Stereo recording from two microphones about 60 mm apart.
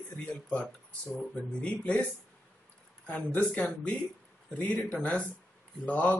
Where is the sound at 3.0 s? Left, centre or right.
Left.